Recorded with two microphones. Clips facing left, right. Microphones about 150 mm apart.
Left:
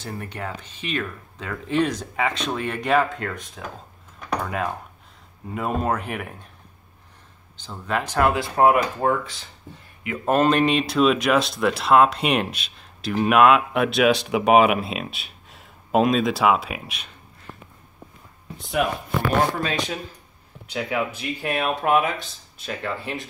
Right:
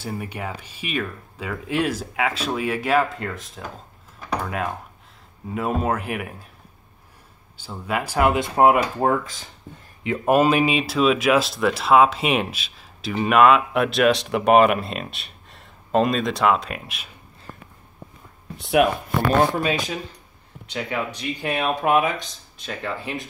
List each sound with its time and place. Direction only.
0.0 s speech: 10° right (ahead or behind)
7.5 s speech: 10° right (ahead or behind)
9.0 s speech: 45° right (ahead or behind)
10.2 s speech: 10° right (ahead or behind)
18.6 s speech: 70° right (ahead or behind)
19.6 s speech: centre (ahead or behind)